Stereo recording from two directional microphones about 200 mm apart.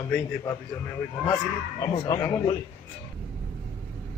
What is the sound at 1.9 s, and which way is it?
Speech, 15° left (ahead or behind).